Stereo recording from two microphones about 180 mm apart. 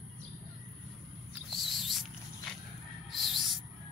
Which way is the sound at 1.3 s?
Centre (ahead or behind).